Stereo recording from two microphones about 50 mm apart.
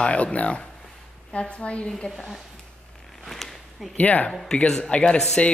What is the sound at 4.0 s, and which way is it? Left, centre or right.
Speech, left.